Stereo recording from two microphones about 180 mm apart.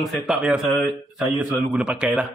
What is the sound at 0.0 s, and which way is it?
A man's voice, 5° right (ahead or behind).